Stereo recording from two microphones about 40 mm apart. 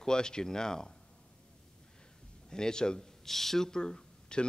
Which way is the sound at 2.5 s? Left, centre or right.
Centre.